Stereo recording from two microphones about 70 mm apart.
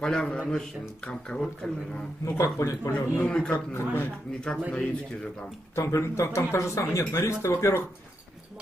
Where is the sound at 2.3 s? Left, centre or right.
Left.